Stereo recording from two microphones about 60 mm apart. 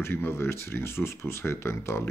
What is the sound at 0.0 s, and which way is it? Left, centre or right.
Speech, left.